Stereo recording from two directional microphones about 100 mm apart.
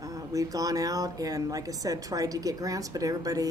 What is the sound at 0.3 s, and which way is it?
A woman's voice, 35° right (ahead or behind).